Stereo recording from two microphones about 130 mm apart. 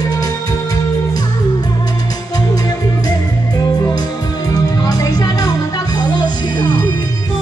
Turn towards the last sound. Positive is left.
turn(degrees=30)  # may be behind; listen again after turning